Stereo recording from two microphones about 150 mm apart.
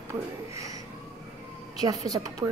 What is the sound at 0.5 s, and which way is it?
Speech, 20° right (ahead or behind).